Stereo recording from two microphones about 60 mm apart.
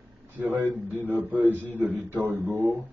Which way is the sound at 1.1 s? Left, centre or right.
Right.